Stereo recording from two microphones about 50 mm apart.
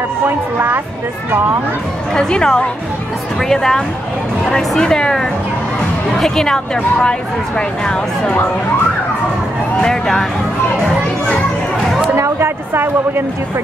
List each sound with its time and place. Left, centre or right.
2.1 s speech: centre
9.8 s speech: centre
12.2 s speech: right